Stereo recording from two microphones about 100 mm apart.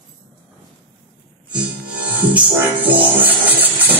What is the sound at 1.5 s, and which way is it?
Music, 10° right (ahead or behind).